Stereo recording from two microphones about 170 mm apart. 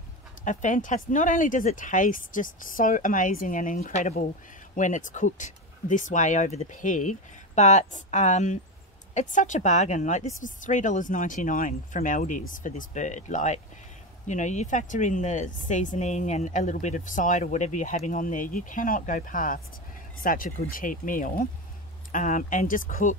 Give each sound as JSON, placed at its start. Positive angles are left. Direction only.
{"t": 0.4, "sound": "a woman's voice", "side_deg": 45}